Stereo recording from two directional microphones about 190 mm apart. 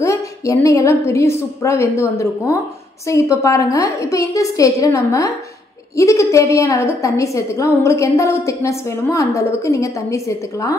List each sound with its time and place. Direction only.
0.0 s a woman's voice: 15° left (ahead or behind)